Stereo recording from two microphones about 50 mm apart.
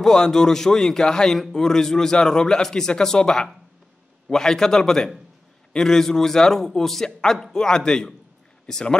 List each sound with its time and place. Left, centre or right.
0.0 s a man's voice: centre